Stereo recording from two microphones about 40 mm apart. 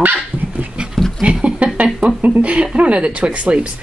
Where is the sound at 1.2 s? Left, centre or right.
Right.